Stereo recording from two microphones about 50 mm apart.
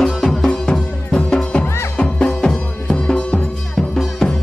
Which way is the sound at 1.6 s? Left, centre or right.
Left.